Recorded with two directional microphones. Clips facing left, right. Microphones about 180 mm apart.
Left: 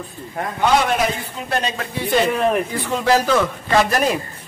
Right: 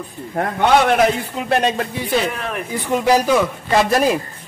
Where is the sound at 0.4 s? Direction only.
60° right (ahead or behind).